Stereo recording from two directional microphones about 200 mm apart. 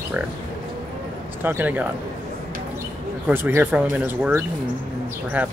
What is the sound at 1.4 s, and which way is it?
Speech, 10° right (ahead or behind).